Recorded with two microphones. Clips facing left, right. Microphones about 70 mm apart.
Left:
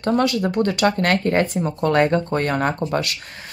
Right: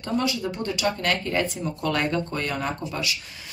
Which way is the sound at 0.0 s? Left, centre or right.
Left.